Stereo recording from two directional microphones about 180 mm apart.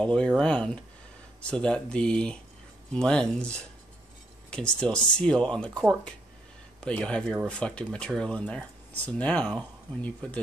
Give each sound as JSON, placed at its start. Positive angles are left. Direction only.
{"t": 0.0, "sound": "speech", "side_deg": 5}